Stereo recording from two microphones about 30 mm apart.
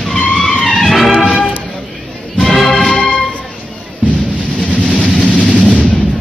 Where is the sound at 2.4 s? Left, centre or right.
Centre.